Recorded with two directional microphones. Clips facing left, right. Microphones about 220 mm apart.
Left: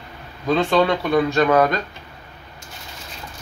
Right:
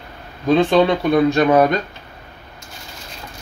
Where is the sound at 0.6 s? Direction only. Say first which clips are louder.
Right 3 dB; 15° right (ahead or behind).